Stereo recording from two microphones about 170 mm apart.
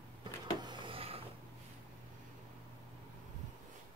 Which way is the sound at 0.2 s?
30° right (ahead or behind).